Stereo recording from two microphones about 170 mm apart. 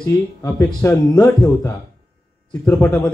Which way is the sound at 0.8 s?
20° left (ahead or behind).